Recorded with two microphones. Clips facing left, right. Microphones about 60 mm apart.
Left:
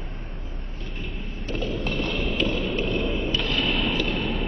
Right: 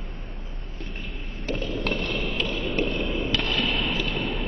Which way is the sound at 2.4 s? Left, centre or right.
Centre.